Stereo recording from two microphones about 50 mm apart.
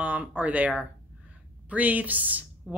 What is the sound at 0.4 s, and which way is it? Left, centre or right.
Speech, right.